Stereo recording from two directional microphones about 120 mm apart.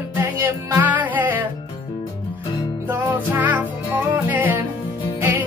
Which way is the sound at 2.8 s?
15° right (ahead or behind).